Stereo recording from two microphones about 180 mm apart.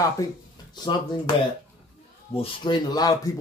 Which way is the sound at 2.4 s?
25° left (ahead or behind).